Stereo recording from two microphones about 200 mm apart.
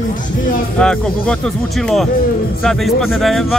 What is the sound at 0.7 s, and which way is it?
A man's voice, 5° left (ahead or behind).